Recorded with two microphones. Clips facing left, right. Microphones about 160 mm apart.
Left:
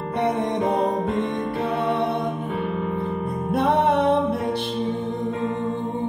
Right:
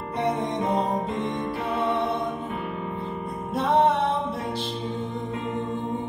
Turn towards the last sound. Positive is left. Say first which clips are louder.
# left 7 dB
turn(degrees=60)  # may be behind; listen again after turning